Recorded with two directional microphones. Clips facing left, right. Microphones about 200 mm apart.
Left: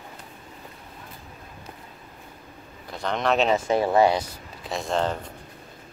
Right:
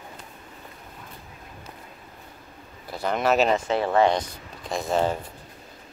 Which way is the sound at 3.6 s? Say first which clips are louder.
Left 1 dB; 10° left (ahead or behind).